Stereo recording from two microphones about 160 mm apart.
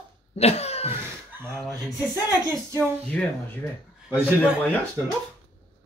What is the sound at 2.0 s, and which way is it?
Speech, 10° right (ahead or behind).